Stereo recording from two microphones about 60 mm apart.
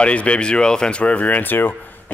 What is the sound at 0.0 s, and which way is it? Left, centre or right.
Speech, centre.